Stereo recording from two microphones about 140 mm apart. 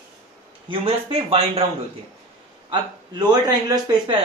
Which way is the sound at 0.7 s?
40° right (ahead or behind).